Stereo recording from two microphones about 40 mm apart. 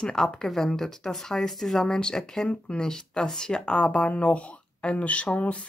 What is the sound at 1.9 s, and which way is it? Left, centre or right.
Speech, centre.